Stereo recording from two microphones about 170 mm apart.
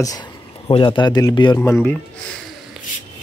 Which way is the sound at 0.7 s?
30° left (ahead or behind).